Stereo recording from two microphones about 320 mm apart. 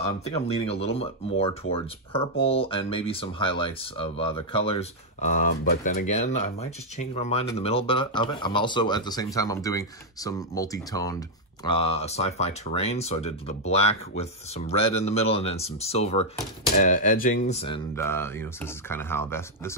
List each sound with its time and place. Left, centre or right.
0.0 s speech: centre